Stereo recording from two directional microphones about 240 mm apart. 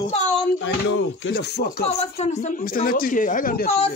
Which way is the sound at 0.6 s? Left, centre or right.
Left.